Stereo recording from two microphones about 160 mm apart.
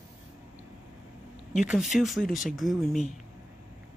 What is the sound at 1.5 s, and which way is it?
Speech, centre (ahead or behind).